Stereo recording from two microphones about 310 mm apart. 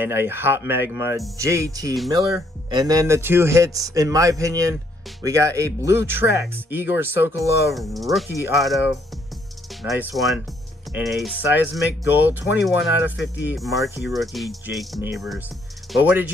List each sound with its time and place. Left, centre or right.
0.0 s speech: centre
13.1 s speech: left
13.5 s speech: centre